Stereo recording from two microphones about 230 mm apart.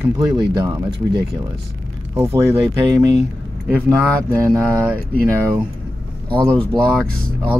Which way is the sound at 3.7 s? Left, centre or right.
Centre.